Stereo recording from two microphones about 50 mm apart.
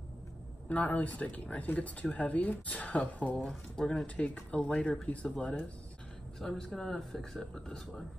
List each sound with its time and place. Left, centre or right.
0.7 s speech: left
3.3 s speech: centre
6.4 s speech: centre